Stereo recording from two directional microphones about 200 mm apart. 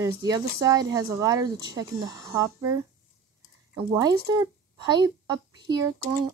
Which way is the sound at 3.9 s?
20° right (ahead or behind).